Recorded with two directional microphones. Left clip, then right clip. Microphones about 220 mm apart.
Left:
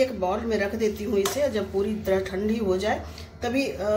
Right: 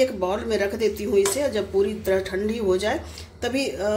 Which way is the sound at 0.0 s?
35° right (ahead or behind).